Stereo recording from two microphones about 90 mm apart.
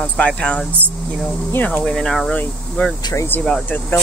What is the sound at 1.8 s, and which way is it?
Speech, 5° left (ahead or behind).